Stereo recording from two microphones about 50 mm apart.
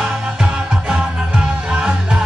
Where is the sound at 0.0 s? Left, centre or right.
Centre.